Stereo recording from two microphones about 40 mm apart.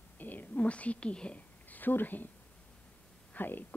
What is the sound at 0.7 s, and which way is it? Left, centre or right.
Speech, left.